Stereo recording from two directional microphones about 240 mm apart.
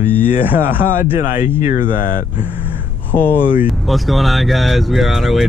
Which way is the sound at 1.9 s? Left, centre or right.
Left.